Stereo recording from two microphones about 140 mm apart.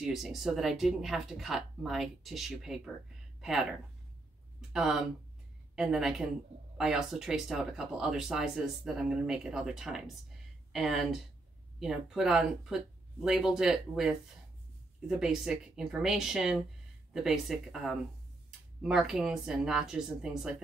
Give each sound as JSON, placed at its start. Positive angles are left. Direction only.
{"t": 0.0, "sound": "speech", "side_deg": 0}
{"t": 3.3, "sound": "a sound", "side_deg": -5}
{"t": 4.6, "sound": "speech", "side_deg": -5}